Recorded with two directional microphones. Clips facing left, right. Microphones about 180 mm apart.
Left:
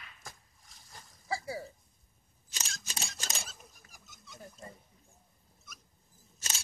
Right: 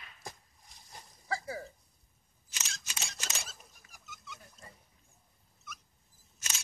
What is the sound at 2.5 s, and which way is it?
Single-lens reflex camera, 35° left (ahead or behind).